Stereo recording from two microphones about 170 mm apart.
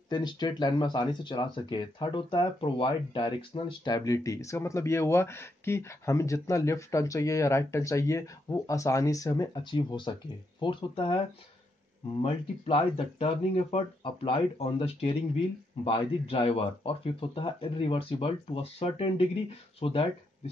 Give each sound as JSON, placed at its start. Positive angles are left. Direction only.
{"t": 0.1, "sound": "speech", "side_deg": 25}